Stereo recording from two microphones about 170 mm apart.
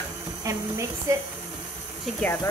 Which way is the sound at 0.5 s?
20° right (ahead or behind).